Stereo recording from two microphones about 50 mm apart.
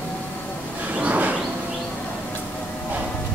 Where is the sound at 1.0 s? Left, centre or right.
Right.